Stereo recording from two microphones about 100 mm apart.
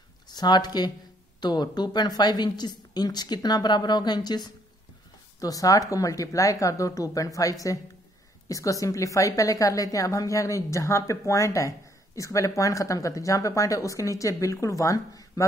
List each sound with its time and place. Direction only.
0.3 s a woman's voice: 45° left (ahead or behind)